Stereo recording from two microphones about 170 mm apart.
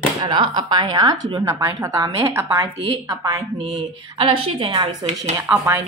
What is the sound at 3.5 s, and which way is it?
A woman's voice, 30° right (ahead or behind).